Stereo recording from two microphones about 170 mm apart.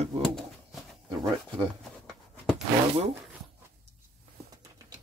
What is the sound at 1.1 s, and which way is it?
Speech, 25° right (ahead or behind).